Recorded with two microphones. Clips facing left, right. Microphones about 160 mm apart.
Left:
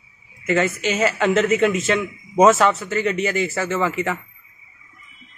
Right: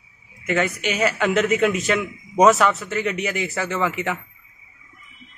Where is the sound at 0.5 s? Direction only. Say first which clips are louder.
Left 2 dB; centre (ahead or behind).